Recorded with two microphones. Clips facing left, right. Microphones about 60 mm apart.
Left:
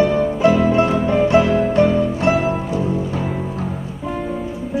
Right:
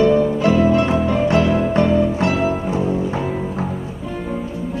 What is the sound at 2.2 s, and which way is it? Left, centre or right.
Music, left.